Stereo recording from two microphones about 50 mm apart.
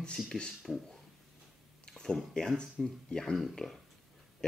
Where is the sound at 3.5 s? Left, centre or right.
Centre.